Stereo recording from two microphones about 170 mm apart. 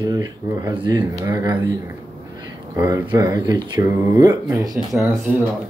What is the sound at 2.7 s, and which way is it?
Speech, 15° right (ahead or behind).